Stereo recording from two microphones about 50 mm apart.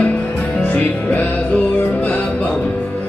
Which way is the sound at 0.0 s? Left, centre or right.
Left.